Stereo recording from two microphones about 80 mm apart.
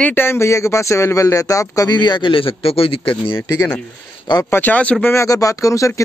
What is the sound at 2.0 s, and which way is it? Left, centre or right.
Speech, left.